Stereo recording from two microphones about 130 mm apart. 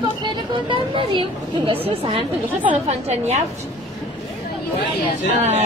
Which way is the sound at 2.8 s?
55° right (ahead or behind).